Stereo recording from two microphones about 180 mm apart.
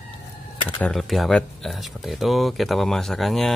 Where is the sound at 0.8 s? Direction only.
Centre (ahead or behind).